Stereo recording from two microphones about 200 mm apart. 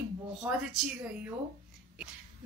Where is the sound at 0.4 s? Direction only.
5° right (ahead or behind).